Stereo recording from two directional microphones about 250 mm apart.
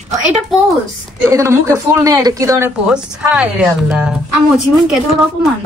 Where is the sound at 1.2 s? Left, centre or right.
Centre.